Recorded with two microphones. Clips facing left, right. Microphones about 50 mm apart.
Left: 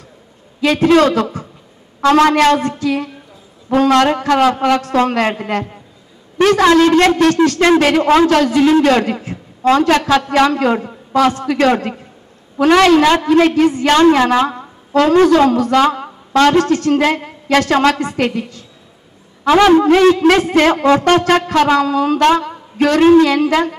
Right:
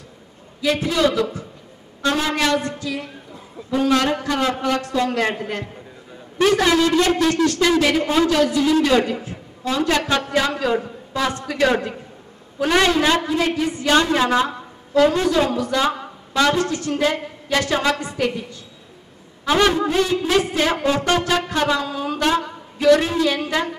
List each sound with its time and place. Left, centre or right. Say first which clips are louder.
0.6 s a man's voice: left 8 dB; left
2.0 s a man's voice: left 10 dB; left
6.3 s a woman's voice: left 6 dB; left
7.8 s a man's voice: left 7 dB; left
13.3 s a woman's voice: left 10 dB; left
20.3 s a man's voice: left 7 dB; left
21.1 s a woman's voice: left 7 dB; left